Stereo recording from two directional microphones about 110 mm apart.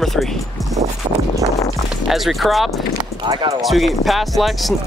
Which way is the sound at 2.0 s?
Centre (ahead or behind).